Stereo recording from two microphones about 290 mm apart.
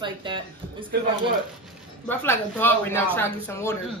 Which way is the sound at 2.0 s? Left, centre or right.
Centre.